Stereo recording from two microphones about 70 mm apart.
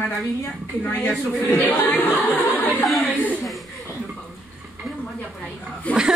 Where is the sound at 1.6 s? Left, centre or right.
Left.